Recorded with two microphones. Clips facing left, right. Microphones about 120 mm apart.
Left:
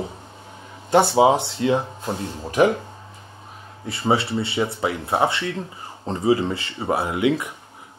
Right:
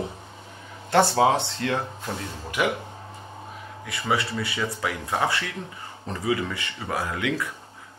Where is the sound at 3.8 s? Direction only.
30° left (ahead or behind).